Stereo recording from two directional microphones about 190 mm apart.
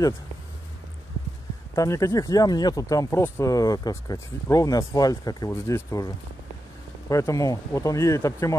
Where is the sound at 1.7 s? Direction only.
15° left (ahead or behind).